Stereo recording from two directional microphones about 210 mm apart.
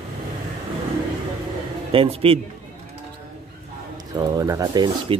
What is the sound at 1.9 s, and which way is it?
Speech, 25° right (ahead or behind).